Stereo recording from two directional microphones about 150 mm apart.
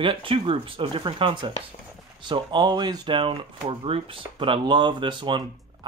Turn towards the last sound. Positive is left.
turn(degrees=-35)  # may be behind; listen again after turning